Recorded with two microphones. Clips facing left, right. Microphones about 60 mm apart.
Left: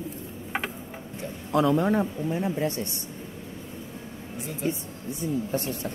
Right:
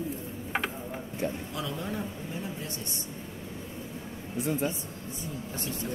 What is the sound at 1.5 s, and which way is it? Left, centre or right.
Speech, left.